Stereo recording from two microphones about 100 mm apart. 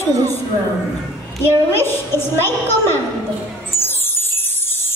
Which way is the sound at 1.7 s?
25° left (ahead or behind).